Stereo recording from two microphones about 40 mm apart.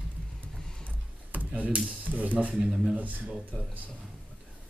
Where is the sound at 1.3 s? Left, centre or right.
Right.